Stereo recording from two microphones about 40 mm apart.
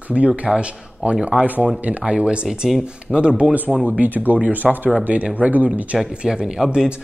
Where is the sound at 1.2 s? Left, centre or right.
Right.